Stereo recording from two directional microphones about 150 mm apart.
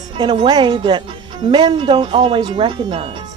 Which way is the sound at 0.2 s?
30° right (ahead or behind).